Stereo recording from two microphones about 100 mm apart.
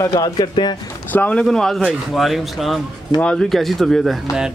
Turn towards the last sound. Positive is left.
turn(degrees=0)  # may be behind; listen again after turning